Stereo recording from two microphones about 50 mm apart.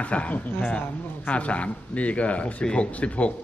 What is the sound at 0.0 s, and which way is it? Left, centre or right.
A man's voice, left.